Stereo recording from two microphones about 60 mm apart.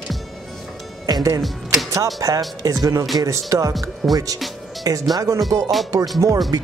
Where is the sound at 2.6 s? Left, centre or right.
Right.